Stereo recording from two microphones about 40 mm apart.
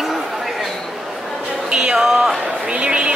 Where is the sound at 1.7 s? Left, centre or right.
Right.